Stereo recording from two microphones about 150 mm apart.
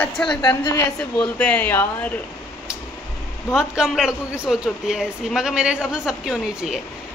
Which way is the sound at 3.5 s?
5° right (ahead or behind).